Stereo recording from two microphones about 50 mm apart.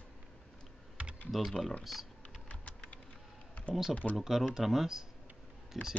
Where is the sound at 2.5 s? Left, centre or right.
Left.